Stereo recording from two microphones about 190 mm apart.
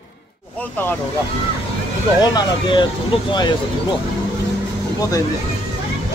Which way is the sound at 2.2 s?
20° left (ahead or behind).